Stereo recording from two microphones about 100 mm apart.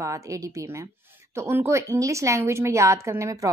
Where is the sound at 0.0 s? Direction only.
35° right (ahead or behind).